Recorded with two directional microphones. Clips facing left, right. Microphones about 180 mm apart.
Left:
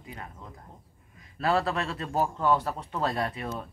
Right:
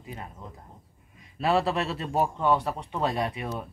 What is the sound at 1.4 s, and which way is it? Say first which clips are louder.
Speech: right 2 dB; 20° right (ahead or behind).